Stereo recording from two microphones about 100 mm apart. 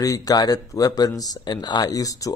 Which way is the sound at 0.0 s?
35° left (ahead or behind).